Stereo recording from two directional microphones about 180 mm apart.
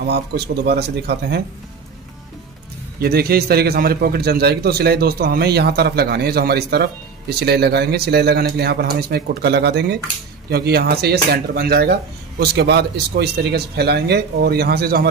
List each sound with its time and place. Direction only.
0.0 s speech: 65° right (ahead or behind)
3.0 s a man's voice: 60° right (ahead or behind)